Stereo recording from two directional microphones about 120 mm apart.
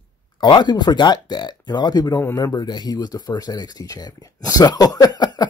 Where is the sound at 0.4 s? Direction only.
40° left (ahead or behind).